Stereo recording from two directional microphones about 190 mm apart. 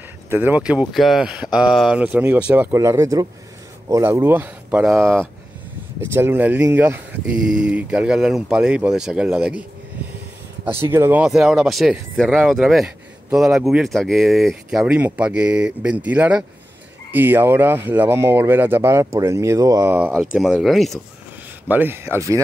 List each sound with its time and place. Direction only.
0.3 s speech: 10° right (ahead or behind)
5.9 s speech: 10° right (ahead or behind)
20.3 s speech: centre (ahead or behind)
21.6 s speech: 10° right (ahead or behind)